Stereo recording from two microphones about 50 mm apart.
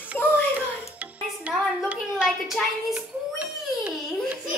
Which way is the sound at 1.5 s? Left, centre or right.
Right.